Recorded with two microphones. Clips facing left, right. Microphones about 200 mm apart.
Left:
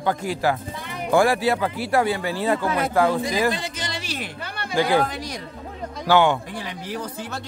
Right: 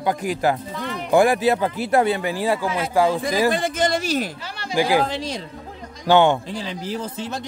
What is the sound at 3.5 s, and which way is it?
Speech, 50° right (ahead or behind).